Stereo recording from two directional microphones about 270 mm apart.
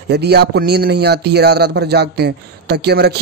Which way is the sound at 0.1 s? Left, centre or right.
Right.